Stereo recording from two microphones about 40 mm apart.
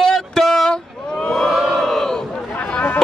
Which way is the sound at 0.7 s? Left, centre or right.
Left.